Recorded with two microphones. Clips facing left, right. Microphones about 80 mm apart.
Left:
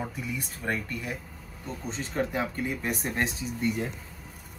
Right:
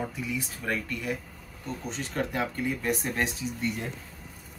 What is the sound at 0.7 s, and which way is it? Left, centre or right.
Speech, left.